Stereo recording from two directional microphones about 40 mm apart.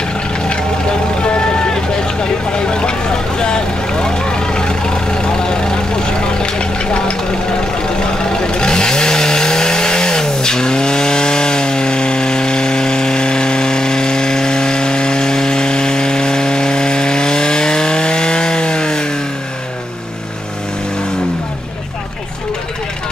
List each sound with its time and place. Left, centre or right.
1.2 s vehicle: left
2.7 s vehicle: left
8.2 s vehicle: centre